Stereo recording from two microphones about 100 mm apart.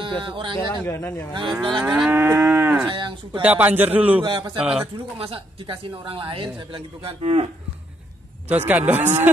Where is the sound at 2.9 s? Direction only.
50° right (ahead or behind).